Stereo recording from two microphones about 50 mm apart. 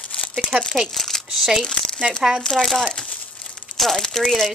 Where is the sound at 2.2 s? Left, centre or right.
Centre.